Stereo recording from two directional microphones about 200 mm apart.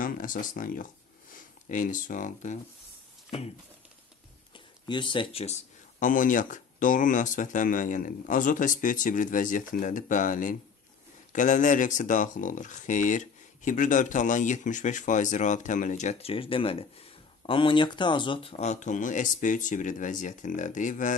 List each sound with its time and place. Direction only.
0.0 s speech: 40° left (ahead or behind)
4.8 s speech: 25° left (ahead or behind); by 21.1 s 40° left (ahead or behind)